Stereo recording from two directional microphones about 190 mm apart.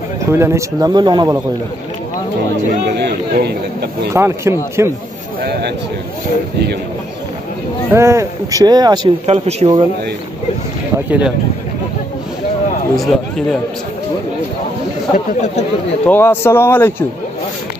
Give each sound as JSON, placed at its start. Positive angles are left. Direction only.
{"t": 0.3, "sound": "speech", "side_deg": -15}
{"t": 2.9, "sound": "a sound", "side_deg": -60}
{"t": 4.1, "sound": "speech", "side_deg": -15}
{"t": 5.4, "sound": "a sound", "side_deg": -55}
{"t": 7.9, "sound": "speech", "side_deg": -15}
{"t": 9.2, "sound": "speech", "side_deg": -35}
{"t": 11.1, "sound": "speech", "side_deg": -5}
{"t": 12.9, "sound": "speech", "side_deg": 0}
{"t": 15.1, "sound": "speech", "side_deg": 40}
{"t": 16.1, "sound": "speech", "side_deg": 10}